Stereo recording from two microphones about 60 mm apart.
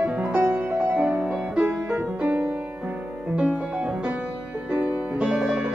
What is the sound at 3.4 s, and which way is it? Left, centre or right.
Music, centre.